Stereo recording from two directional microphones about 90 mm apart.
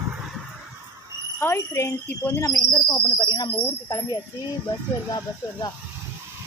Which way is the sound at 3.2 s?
50° left (ahead or behind).